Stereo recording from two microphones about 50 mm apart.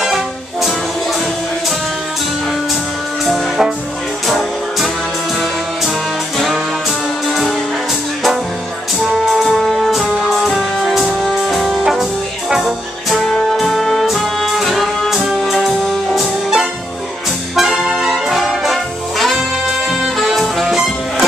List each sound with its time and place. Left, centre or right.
0.1 s music: centre
4.3 s music: centre
6.3 s music: centre
9.0 s music: centre
17.6 s brass instrument: centre
19.3 s music: centre